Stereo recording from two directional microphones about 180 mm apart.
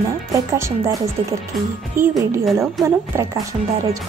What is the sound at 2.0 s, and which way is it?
A woman's voice, 15° right (ahead or behind).